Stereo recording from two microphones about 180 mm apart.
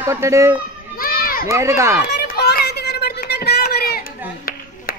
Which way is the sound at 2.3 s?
60° left (ahead or behind).